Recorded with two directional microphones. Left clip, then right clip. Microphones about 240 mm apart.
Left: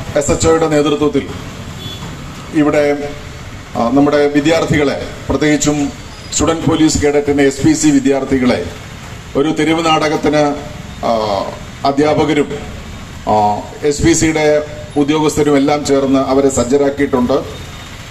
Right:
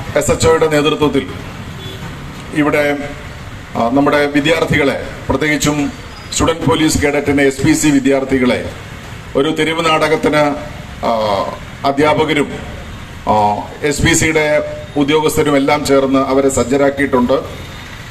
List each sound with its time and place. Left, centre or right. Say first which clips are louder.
0.1 s a man's voice: even; right
2.5 s a man's voice: left 1 dB; right